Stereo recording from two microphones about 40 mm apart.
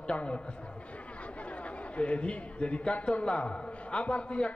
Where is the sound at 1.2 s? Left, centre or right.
Left.